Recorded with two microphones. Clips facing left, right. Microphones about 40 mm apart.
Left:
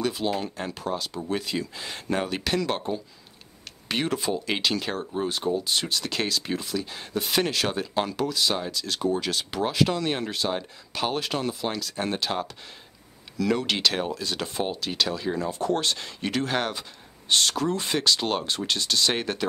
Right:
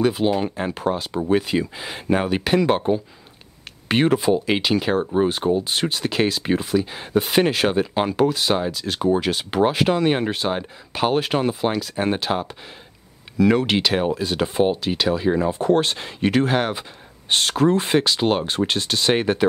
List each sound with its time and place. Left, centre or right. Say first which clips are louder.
0.0 s speech: right 7 dB; right
4.1 s speech: right 8 dB; centre
5.1 s speech: right 5 dB; right